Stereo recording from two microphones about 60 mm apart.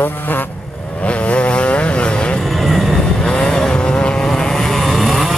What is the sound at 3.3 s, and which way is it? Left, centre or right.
Vehicle, centre.